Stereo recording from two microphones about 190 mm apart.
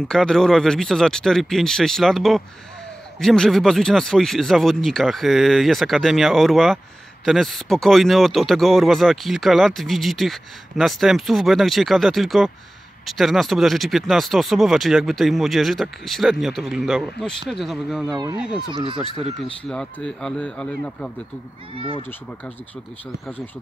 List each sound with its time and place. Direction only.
0.1 s speech: 5° left (ahead or behind)
18.0 s speech: 20° right (ahead or behind)
19.7 s speech: 5° left (ahead or behind)